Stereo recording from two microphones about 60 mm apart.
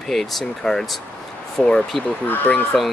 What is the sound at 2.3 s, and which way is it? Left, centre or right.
Speech, left.